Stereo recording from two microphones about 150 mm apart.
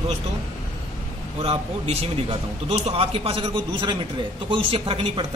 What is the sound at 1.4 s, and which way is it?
A man's voice, 45° right (ahead or behind).